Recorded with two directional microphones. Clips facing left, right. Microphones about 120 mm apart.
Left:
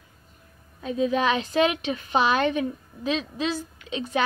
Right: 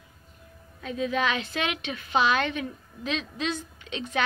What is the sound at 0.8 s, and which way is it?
Speech, 25° left (ahead or behind).